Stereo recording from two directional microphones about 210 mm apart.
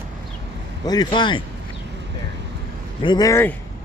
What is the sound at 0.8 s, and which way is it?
Speech, 20° left (ahead or behind).